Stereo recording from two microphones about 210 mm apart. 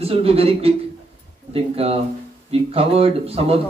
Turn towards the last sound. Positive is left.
turn(degrees=-30)  # may be behind; listen again after turning